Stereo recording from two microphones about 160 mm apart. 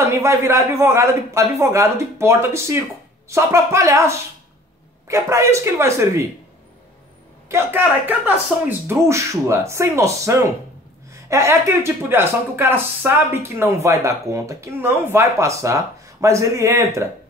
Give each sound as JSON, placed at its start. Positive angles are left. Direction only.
{"t": 0.0, "sound": "speech", "side_deg": -15}
{"t": 7.4, "sound": "a man's voice", "side_deg": -15}